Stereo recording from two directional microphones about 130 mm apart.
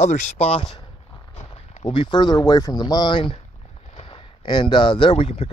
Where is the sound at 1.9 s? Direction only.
35° left (ahead or behind).